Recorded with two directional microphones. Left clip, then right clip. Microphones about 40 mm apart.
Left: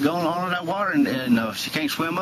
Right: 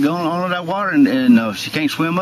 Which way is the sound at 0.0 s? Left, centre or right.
Centre.